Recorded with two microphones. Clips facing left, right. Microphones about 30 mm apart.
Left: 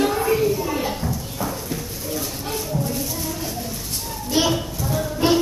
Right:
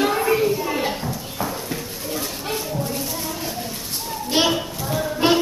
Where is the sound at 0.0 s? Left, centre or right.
Centre.